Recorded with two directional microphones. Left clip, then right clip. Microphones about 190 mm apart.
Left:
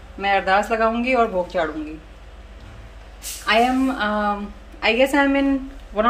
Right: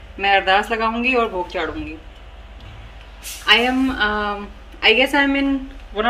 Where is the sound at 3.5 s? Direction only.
40° left (ahead or behind).